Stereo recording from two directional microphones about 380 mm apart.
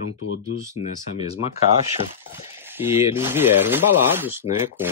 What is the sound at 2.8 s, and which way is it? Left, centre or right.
Speech, centre.